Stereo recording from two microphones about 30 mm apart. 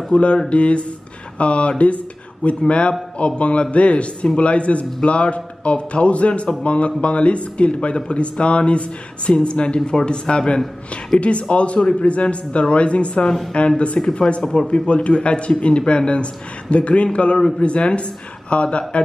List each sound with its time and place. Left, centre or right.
0.1 s a man's voice: left